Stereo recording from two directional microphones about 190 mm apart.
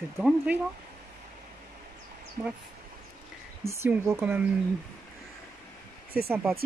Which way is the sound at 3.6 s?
15° right (ahead or behind).